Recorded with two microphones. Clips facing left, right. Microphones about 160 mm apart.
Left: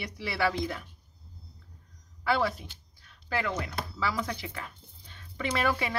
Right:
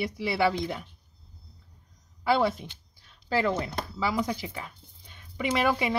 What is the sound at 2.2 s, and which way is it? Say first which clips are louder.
Speech: right 4 dB; 25° right (ahead or behind).